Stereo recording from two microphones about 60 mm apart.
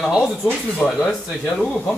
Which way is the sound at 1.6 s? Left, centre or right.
Centre.